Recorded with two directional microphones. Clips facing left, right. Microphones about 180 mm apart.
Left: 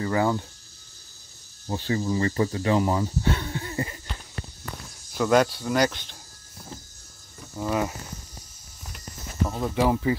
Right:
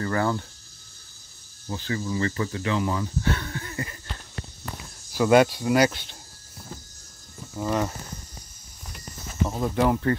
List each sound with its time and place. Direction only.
0.0 s speech: 15° left (ahead or behind)
1.7 s speech: 30° left (ahead or behind)
3.2 s wheeze: 20° left (ahead or behind)
5.1 s speech: 5° right (ahead or behind)
7.5 s speech: centre (ahead or behind)
9.5 s speech: centre (ahead or behind)